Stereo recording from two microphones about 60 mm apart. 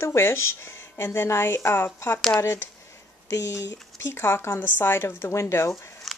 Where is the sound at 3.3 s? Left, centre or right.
Left.